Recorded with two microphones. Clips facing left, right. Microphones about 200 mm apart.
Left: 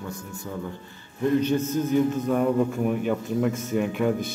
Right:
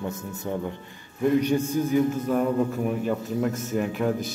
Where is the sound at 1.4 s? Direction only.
15° right (ahead or behind).